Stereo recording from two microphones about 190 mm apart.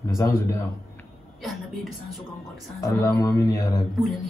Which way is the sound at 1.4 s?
Centre (ahead or behind).